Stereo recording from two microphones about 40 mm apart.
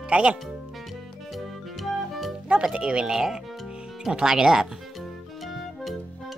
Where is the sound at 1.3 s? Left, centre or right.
Centre.